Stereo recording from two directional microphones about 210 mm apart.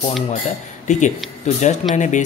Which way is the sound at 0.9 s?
35° left (ahead or behind).